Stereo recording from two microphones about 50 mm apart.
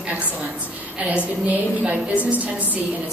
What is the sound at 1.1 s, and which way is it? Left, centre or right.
Speech, right.